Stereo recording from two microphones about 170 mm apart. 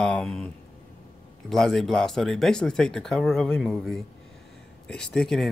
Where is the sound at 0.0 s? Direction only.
5° left (ahead or behind).